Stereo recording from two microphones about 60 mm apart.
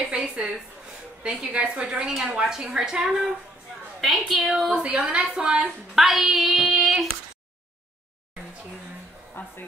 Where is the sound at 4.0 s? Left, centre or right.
Centre.